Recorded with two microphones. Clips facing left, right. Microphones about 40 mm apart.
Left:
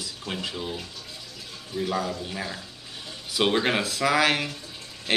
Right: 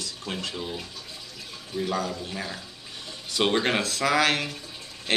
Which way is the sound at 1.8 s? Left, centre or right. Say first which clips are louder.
Left 1 dB; centre.